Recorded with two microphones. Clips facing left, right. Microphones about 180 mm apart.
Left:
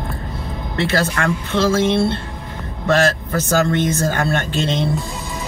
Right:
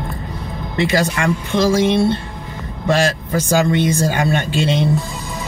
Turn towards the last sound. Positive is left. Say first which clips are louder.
# right 2 dB
turn(degrees=-10)  # may be behind; listen again after turning